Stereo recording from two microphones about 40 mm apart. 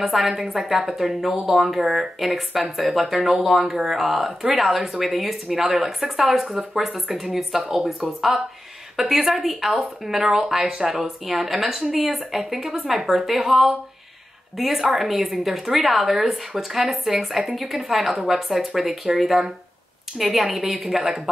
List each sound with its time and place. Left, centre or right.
0.0 s speech: centre
8.9 s a woman's voice: centre